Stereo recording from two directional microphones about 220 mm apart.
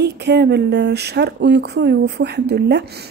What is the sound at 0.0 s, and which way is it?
A woman's voice, 50° right (ahead or behind).